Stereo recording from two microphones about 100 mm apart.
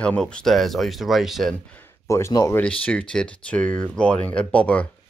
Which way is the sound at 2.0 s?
30° left (ahead or behind).